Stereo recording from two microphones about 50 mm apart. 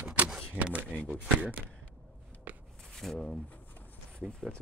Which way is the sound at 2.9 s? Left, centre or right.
Centre.